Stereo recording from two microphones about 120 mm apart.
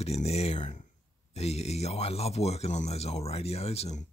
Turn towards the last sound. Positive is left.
turn(degrees=65)  # may be behind; listen again after turning